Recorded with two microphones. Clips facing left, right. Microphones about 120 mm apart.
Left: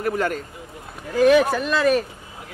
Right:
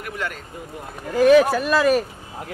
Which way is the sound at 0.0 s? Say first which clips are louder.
Left 7 dB; 40° left (ahead or behind).